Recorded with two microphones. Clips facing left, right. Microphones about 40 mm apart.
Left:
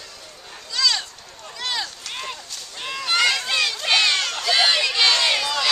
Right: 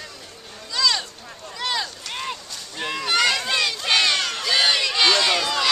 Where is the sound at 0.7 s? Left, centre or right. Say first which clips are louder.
Even; centre.